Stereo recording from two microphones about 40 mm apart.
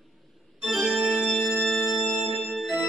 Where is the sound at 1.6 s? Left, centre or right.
Centre.